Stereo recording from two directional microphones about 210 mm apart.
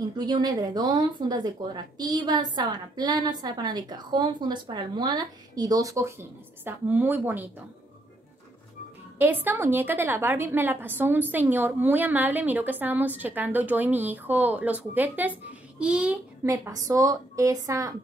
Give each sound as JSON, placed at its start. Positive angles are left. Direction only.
{"t": 0.0, "sound": "a woman's voice", "side_deg": -20}
{"t": 9.2, "sound": "a woman's voice", "side_deg": -10}
{"t": 16.4, "sound": "a woman's voice", "side_deg": -15}